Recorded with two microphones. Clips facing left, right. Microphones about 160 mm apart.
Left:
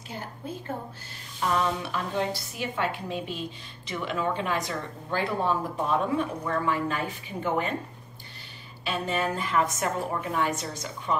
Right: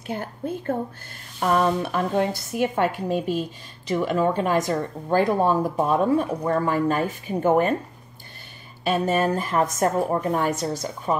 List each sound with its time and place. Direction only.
0.1 s a woman's voice: 55° right (ahead or behind)
8.8 s a woman's voice: 45° right (ahead or behind)